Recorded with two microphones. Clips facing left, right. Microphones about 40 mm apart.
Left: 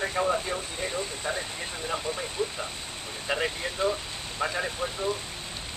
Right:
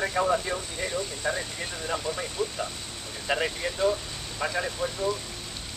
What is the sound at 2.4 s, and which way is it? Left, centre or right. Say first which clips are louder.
Speech: even; centre.